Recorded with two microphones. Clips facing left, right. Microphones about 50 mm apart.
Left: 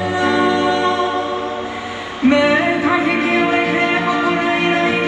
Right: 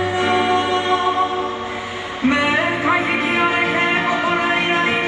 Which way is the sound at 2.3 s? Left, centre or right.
Right.